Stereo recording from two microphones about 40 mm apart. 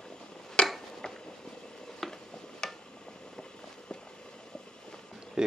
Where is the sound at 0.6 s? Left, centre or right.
Left.